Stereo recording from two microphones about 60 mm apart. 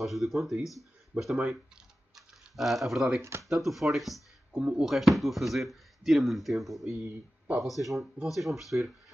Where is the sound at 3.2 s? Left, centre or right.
Right.